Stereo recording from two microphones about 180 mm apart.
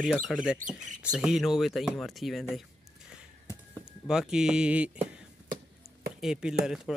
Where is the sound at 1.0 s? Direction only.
5° right (ahead or behind).